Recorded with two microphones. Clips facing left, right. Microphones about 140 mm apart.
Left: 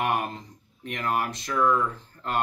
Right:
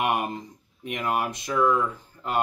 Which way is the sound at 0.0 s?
15° right (ahead or behind).